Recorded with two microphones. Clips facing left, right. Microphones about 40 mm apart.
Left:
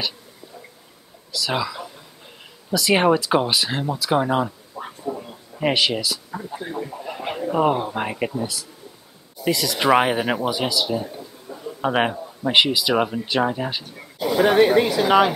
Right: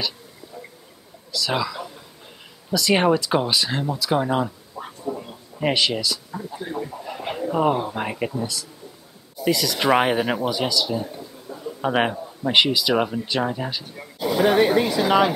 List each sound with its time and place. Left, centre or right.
1.3 s speech: centre
5.0 s a sound: centre
6.6 s speech: centre
13.9 s speech: centre